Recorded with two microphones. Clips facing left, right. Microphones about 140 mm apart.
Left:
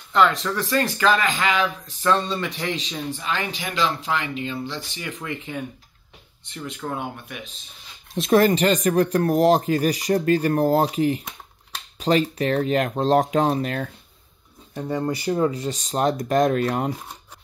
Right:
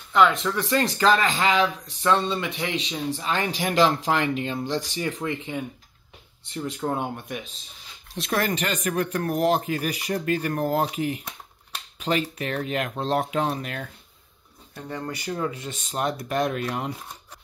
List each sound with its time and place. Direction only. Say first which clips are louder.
0.4 s speech: left 1 dB; 20° right (ahead or behind)
3.1 s speech: right 2 dB; 35° right (ahead or behind)
3.6 s speech: right 6 dB; 50° right (ahead or behind)
4.7 s speech: right 6 dB; 40° right (ahead or behind)
5.2 s speech: right 1 dB; 25° right (ahead or behind)
8.2 s speech: left 8 dB; 25° left (ahead or behind)
15.0 s speech: left 7 dB; 35° left (ahead or behind)